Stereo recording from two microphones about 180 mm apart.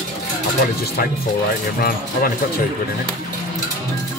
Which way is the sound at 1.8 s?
55° left (ahead or behind).